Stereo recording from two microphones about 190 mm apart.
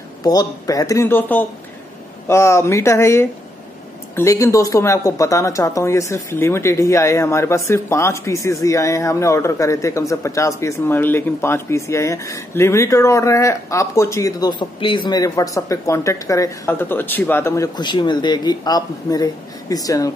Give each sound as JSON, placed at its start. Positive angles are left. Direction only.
{"t": 0.2, "sound": "speech", "side_deg": 20}